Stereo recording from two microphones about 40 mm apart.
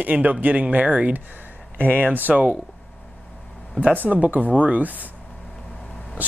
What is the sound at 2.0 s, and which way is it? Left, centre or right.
Speech, right.